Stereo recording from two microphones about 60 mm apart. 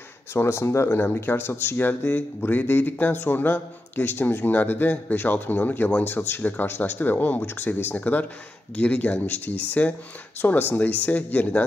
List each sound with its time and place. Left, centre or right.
0.3 s speech: left
0.8 s speech: left